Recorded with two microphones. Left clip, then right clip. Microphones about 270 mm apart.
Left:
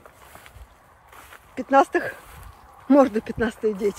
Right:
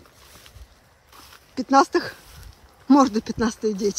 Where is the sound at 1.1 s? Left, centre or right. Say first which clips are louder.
Right 1 dB; centre.